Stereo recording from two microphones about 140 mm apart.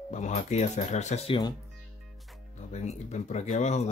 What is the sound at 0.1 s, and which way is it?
Speech, 55° left (ahead or behind).